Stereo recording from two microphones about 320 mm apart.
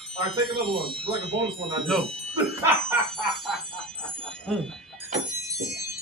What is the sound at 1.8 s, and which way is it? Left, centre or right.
A man's voice, centre.